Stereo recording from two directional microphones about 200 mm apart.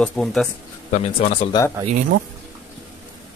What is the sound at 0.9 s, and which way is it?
Speech, 35° left (ahead or behind).